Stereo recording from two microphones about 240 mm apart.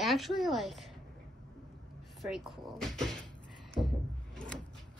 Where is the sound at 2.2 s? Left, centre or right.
Centre.